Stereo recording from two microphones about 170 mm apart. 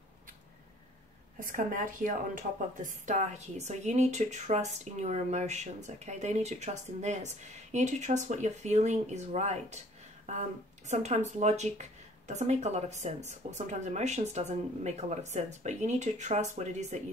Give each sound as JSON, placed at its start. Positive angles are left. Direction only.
{"t": 1.4, "sound": "speech", "side_deg": -50}
{"t": 10.9, "sound": "speech", "side_deg": -45}